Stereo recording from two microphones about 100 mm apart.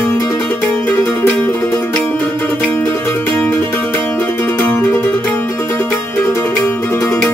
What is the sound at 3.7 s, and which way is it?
Music, 20° left (ahead or behind).